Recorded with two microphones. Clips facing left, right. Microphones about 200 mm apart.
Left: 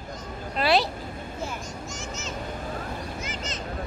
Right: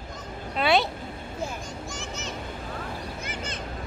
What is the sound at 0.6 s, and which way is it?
Speech, centre (ahead or behind).